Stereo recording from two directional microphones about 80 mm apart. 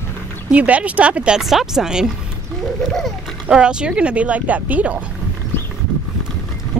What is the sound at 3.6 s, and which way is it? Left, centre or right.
Speech, centre.